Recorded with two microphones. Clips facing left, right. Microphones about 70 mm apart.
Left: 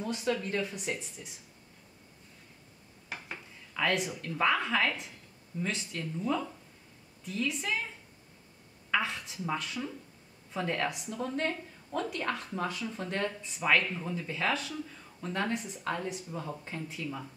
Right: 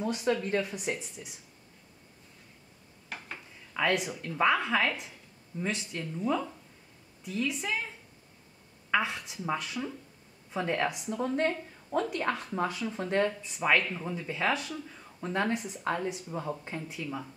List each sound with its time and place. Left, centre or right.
0.0 s speech: centre
3.1 s dishes: centre
3.7 s a woman's voice: centre
8.9 s speech: centre